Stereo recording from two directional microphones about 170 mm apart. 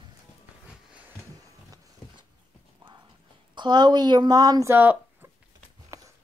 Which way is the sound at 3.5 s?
25° right (ahead or behind).